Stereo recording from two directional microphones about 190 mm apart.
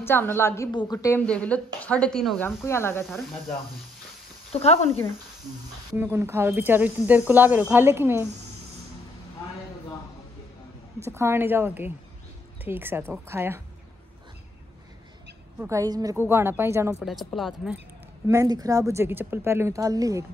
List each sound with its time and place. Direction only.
0.0 s speech: 10° left (ahead or behind)
4.5 s speech: 35° left (ahead or behind)
5.9 s speech: 10° right (ahead or behind)
11.0 s speech: 15° right (ahead or behind)
15.6 s speech: 15° right (ahead or behind)
17.0 s speech: centre (ahead or behind)
18.2 s speech: 15° right (ahead or behind)